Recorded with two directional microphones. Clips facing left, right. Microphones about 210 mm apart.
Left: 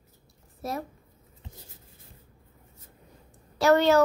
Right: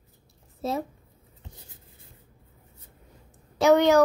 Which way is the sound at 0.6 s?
25° right (ahead or behind).